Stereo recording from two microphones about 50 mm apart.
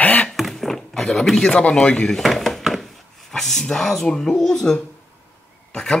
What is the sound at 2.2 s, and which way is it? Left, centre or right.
A man's voice, centre.